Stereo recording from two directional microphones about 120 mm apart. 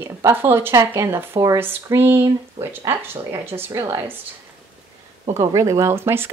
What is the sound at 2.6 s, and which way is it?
Speech, 65° right (ahead or behind).